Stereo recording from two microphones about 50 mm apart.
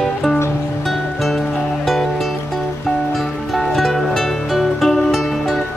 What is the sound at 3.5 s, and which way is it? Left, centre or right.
Music, centre.